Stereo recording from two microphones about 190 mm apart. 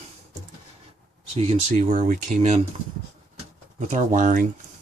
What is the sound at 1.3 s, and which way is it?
Speech, 35° right (ahead or behind).